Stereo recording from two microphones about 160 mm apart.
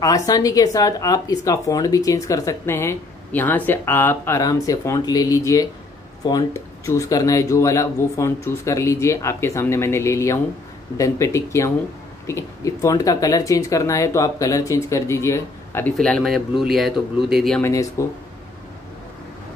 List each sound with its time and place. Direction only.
0.0 s speech: 20° left (ahead or behind); by 17.6 s centre (ahead or behind)
17.6 s speech: 15° left (ahead or behind)